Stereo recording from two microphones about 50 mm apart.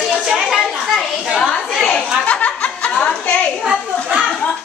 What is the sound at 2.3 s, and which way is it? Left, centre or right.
Chuckle, left.